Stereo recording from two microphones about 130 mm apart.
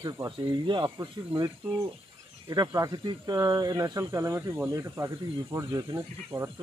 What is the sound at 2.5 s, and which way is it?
Speech, 25° right (ahead or behind).